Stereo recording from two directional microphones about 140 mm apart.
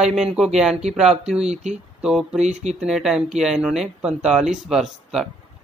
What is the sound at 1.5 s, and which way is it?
Speech, 50° right (ahead or behind).